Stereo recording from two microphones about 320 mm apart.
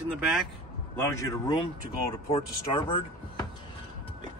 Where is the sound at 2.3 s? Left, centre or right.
Centre.